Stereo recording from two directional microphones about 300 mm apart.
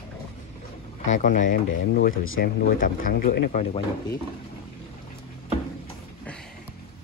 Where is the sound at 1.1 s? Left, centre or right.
Left.